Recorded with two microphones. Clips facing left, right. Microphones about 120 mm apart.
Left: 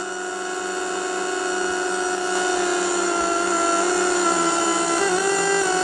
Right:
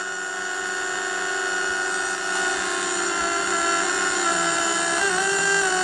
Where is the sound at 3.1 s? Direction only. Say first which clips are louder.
Left 4 dB; 40° left (ahead or behind).